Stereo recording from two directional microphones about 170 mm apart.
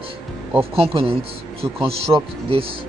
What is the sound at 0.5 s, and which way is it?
Speech, 35° right (ahead or behind).